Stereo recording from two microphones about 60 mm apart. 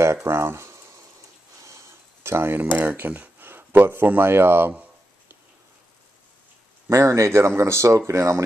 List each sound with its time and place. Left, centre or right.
0.0 s a sound: right
2.6 s speech: right
6.9 s speech: right